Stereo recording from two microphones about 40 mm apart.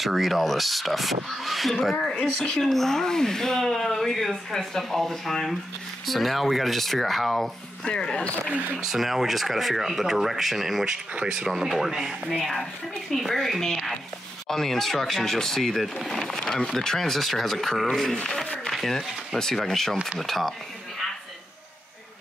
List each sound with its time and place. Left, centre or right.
0.0 s speech: centre
2.2 s speech: centre
2.5 s speech: centre
7.8 s speech: left
8.7 s speech: centre
11.1 s speech: right
11.4 s speech: centre
13.1 s speech: centre
18.1 s speech: centre
18.7 s speech: centre